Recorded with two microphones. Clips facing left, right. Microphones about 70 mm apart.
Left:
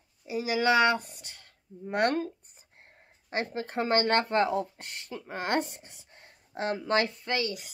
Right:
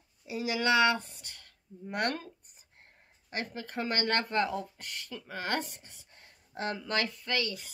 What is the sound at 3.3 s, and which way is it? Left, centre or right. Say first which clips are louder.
A woman's voice: left 6 dB; left.